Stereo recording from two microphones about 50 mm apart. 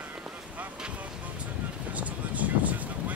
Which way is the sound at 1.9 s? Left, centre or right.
Right.